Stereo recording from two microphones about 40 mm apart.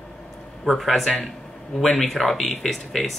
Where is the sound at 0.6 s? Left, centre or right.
Centre.